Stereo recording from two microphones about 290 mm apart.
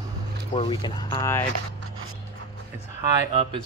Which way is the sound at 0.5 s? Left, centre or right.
Centre.